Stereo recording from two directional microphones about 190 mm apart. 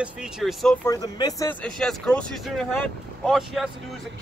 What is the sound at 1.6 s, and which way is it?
Speech, 5° left (ahead or behind).